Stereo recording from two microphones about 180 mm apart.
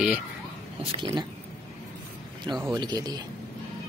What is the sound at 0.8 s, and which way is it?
Speech, 30° right (ahead or behind).